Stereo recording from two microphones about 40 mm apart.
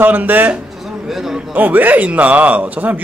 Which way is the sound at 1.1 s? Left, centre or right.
Centre.